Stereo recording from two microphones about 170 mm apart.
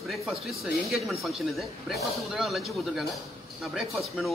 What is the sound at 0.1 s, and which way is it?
Speech, centre (ahead or behind).